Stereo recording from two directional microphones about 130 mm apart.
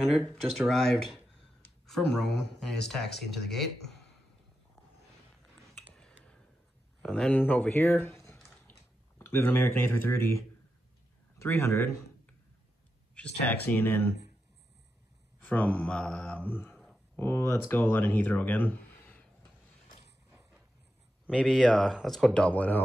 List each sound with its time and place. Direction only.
0.3 s speech: 5° left (ahead or behind)
5.9 s a sound: 5° left (ahead or behind)
7.0 s speech: 5° left (ahead or behind)
13.5 s speech: 15° left (ahead or behind)
15.4 s speech: 10° left (ahead or behind)
20.2 s a sound: 5° right (ahead or behind)
21.3 s speech: 5° left (ahead or behind)